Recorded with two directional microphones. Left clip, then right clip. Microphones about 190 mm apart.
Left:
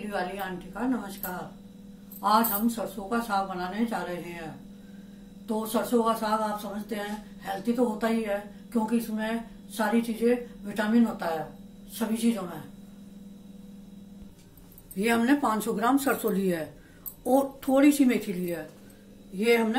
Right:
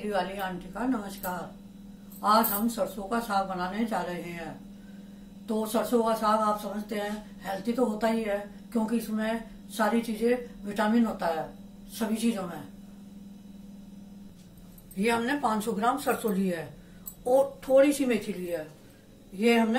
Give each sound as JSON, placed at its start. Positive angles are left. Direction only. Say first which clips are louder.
{"t": 0.1, "sound": "speech", "louder": "right 1 dB", "side_deg": 0}
{"t": 5.5, "sound": "speech", "louder": "even", "side_deg": 0}
{"t": 15.0, "sound": "speech", "louder": "left 2 dB", "side_deg": 55}